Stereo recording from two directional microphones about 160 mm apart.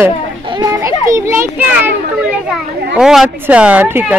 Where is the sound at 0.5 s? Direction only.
25° right (ahead or behind).